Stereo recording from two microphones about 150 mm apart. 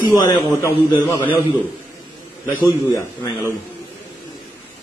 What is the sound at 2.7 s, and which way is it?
Speech, 20° left (ahead or behind).